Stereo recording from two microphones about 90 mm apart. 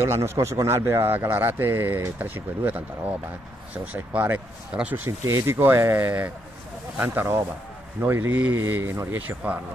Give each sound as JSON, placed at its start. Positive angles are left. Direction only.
{"t": 0.0, "sound": "speech", "side_deg": -30}
{"t": 5.2, "sound": "speech", "side_deg": -30}